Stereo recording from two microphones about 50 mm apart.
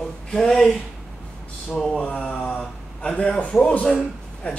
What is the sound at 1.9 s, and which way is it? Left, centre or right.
Speech, centre.